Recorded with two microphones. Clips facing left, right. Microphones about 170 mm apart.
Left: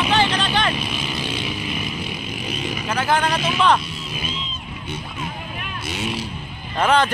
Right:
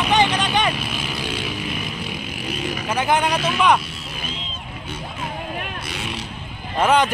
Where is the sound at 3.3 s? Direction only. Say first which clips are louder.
Even; 5° right (ahead or behind).